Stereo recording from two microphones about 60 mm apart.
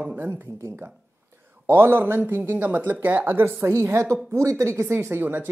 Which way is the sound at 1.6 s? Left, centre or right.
Right.